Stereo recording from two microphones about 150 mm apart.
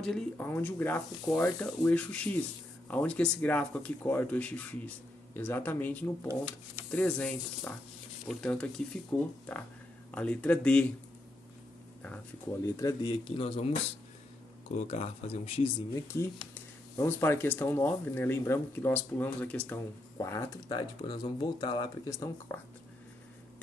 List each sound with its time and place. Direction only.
0.0 s speech: 5° left (ahead or behind)
8.4 s speech: 5° left (ahead or behind)
12.6 s speech: 20° left (ahead or behind); by 13.7 s 40° left (ahead or behind)
14.8 s speech: 45° left (ahead or behind)
16.1 s speech: 20° left (ahead or behind)
20.2 s speech: 20° left (ahead or behind)